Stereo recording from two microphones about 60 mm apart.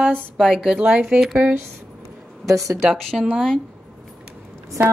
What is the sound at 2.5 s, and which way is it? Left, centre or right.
Speech, right.